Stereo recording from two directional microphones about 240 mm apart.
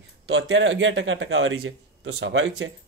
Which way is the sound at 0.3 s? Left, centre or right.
Right.